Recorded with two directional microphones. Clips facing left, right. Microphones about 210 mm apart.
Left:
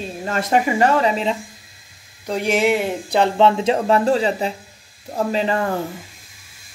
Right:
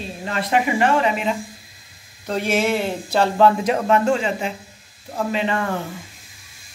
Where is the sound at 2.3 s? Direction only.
15° left (ahead or behind); by 5.6 s 35° left (ahead or behind).